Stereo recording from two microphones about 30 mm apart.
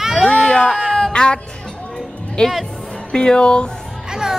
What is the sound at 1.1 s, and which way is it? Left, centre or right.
Music, left.